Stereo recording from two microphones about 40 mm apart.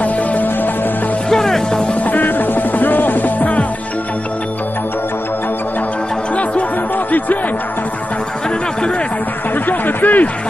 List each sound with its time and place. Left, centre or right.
0.0 s music: left
1.3 s music: centre
2.0 s music: left
9.7 s a sound: left